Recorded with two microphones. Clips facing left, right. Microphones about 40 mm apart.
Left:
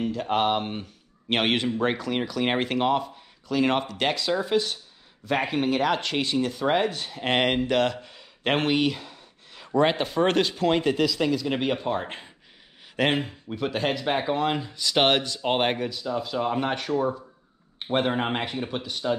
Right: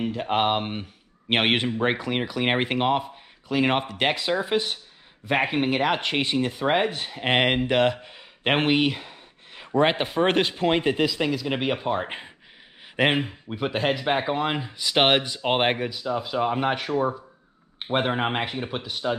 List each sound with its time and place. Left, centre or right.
0.0 s speech: right